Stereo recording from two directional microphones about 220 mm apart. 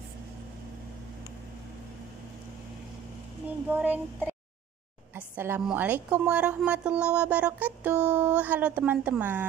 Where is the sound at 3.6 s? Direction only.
10° right (ahead or behind).